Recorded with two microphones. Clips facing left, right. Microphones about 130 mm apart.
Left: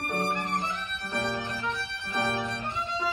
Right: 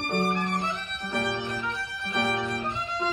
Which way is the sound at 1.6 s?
Centre (ahead or behind).